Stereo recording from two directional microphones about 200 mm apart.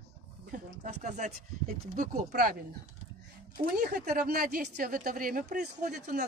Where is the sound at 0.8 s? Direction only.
40° right (ahead or behind).